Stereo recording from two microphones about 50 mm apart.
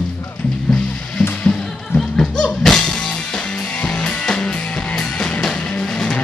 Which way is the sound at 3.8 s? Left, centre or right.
Centre.